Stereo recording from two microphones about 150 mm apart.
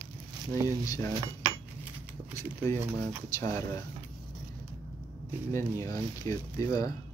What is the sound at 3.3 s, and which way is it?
Speech, 20° left (ahead or behind).